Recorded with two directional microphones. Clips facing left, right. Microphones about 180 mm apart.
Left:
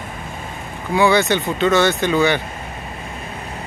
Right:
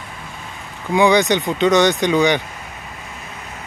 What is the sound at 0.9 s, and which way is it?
Speech, 15° right (ahead or behind).